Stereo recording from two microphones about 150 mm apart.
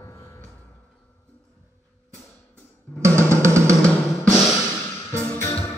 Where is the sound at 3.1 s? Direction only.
10° left (ahead or behind).